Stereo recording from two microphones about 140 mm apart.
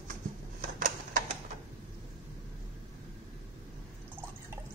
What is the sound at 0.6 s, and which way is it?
Typewriter, 65° right (ahead or behind).